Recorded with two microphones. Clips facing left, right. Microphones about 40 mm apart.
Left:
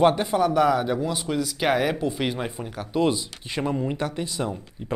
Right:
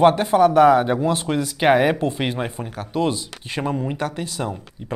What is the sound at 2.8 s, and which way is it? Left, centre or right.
Speech, centre.